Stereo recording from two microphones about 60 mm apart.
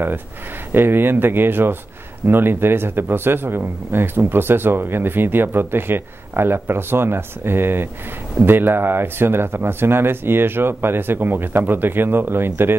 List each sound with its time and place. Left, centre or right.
0.7 s speech: right